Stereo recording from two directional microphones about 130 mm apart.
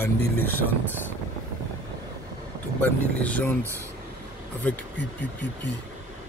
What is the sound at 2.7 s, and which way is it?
Speech, 10° left (ahead or behind).